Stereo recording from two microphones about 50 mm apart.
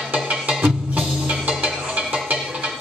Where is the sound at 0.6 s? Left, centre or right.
Right.